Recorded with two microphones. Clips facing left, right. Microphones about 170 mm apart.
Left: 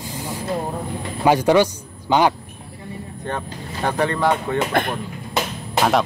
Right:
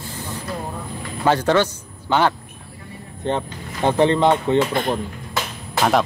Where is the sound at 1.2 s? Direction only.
10° left (ahead or behind).